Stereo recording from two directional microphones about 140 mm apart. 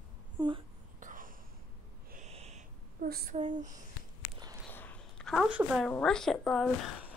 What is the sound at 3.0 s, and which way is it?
Child singing, 85° right.